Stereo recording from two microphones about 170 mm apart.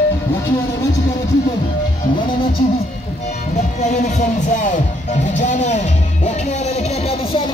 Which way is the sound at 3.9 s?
45° left (ahead or behind).